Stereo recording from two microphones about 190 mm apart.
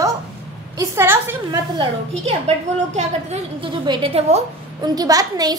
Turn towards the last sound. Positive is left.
turn(degrees=-20)  # may be behind; listen again after turning